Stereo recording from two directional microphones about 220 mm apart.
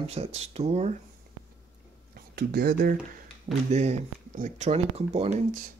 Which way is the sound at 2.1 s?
45° right (ahead or behind).